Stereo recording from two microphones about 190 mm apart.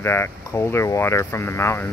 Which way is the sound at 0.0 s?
15° left (ahead or behind).